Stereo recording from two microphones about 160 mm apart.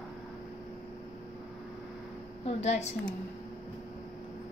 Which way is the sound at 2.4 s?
45° left (ahead or behind).